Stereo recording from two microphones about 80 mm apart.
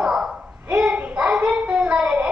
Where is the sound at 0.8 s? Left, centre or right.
Centre.